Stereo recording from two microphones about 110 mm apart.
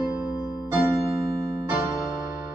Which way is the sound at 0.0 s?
10° right (ahead or behind).